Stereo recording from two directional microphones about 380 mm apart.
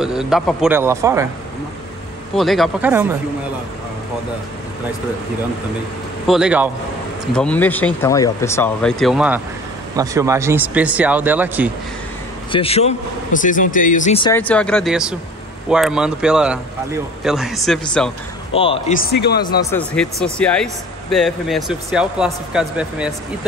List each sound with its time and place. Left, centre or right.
0.0 s speech: centre
2.3 s speech: centre
6.2 s speech: centre
12.4 s speech: centre
18.5 s speech: centre
19.8 s speech: centre